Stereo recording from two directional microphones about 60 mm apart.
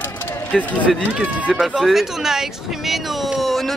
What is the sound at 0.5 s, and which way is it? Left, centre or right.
Speech, centre.